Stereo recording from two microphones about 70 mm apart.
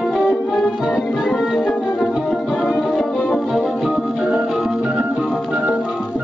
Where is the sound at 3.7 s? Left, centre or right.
Centre.